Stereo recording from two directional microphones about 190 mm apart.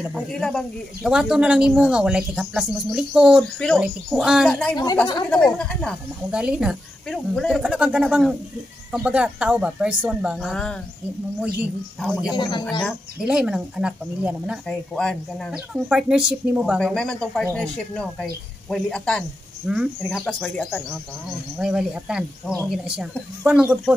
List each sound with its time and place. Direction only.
0.1 s speech: centre (ahead or behind)
12.1 s speech: 5° right (ahead or behind)
12.4 s speech: 25° left (ahead or behind)
12.8 s speech: 5° right (ahead or behind)
18.7 s speech: 5° left (ahead or behind)